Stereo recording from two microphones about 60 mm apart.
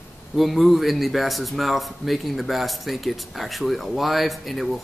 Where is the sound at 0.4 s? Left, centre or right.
Centre.